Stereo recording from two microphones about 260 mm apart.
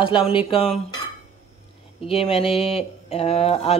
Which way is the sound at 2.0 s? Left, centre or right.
Left.